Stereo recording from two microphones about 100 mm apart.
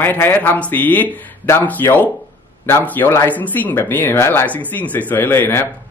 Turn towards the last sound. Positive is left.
turn(degrees=20)  # may be behind; listen again after turning